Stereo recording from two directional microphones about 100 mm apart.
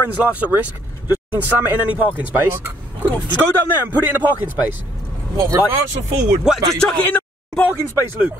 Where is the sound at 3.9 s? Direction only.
15° right (ahead or behind).